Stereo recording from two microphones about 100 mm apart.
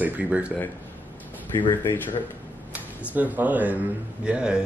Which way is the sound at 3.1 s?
15° right (ahead or behind).